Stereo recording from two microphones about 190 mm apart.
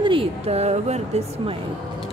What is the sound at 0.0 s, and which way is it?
Speech, 30° right (ahead or behind).